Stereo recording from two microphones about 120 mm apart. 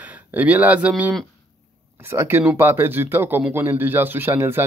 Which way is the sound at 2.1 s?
20° right (ahead or behind).